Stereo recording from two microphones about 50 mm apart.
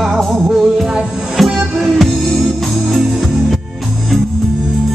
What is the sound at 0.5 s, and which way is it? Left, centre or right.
Music, centre.